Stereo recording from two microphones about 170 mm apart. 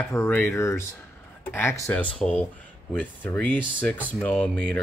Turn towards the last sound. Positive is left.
turn(degrees=5)  # may be behind; listen again after turning